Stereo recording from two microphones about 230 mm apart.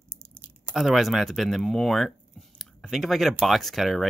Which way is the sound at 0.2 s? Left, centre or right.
Centre.